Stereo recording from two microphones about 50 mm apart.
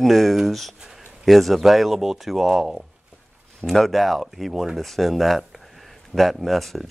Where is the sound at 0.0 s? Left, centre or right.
Centre.